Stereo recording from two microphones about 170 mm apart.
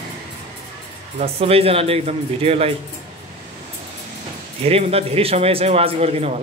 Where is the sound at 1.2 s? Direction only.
35° right (ahead or behind).